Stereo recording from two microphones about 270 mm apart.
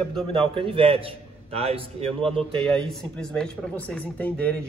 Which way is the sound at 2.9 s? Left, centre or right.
Centre.